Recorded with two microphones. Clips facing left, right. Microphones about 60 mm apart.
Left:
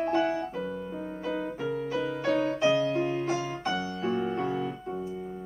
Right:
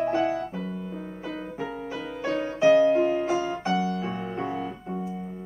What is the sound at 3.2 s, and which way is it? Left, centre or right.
Keyboard, centre.